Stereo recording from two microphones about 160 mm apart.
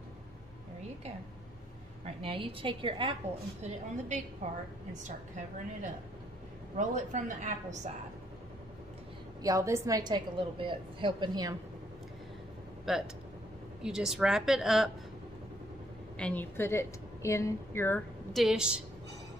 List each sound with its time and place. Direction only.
2.0 s a woman's voice: 35° right (ahead or behind)
4.4 s a woman's voice: 50° right (ahead or behind)
9.4 s a woman's voice: 20° right (ahead or behind)
12.8 s a woman's voice: centre (ahead or behind)
16.2 s a woman's voice: 10° left (ahead or behind)
18.3 s a woman's voice: centre (ahead or behind)